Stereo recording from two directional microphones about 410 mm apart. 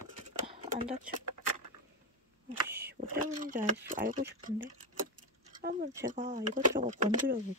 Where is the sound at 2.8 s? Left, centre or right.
Centre.